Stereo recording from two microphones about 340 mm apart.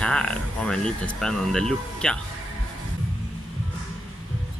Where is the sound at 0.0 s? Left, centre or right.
Centre.